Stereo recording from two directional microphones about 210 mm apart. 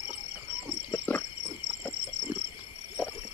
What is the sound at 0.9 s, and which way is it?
Cricket, 10° left (ahead or behind).